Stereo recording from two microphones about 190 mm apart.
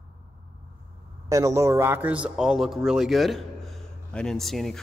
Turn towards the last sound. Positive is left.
turn(degrees=0)  # may be behind; listen again after turning